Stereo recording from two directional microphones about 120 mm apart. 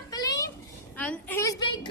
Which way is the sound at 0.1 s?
30° left (ahead or behind).